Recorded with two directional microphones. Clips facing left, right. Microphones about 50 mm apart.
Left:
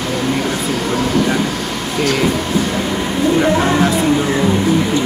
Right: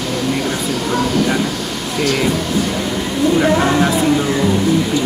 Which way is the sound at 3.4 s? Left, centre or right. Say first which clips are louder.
Even; centre.